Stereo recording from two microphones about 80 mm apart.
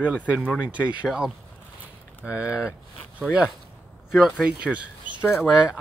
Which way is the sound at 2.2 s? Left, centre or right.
Centre.